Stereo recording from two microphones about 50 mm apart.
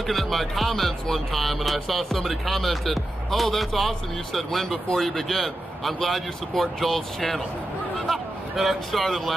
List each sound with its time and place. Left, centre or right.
0.0 s speech: centre